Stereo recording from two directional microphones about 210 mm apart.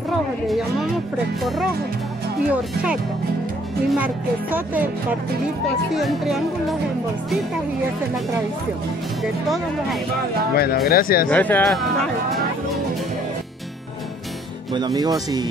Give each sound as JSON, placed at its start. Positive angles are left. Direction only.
{"t": 1.4, "sound": "speech", "side_deg": 0}
{"t": 5.9, "sound": "speech", "side_deg": 0}
{"t": 9.2, "sound": "speech", "side_deg": 0}
{"t": 10.5, "sound": "speech", "side_deg": 45}
{"t": 11.2, "sound": "speech", "side_deg": 5}
{"t": 14.7, "sound": "speech", "side_deg": -20}